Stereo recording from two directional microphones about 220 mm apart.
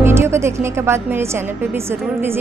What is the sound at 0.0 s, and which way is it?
A woman's voice, 10° right (ahead or behind).